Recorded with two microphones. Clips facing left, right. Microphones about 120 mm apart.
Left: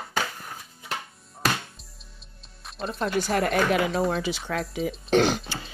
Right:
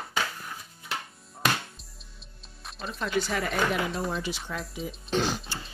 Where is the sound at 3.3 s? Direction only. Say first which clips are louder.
Left 5 dB; 65° left (ahead or behind).